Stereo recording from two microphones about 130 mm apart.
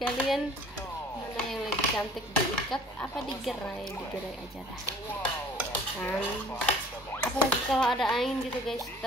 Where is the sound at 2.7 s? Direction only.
10° left (ahead or behind).